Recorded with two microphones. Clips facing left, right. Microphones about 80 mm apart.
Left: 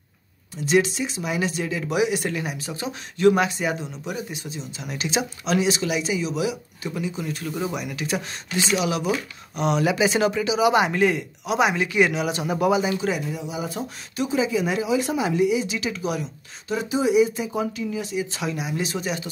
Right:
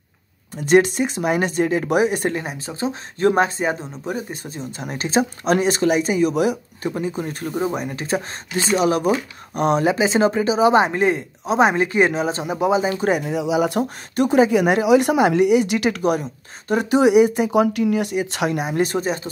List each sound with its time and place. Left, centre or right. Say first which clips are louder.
0.6 s speech: right 6 dB; right
12.9 s speech: right 5 dB; right
13.4 s speech: right 10 dB; right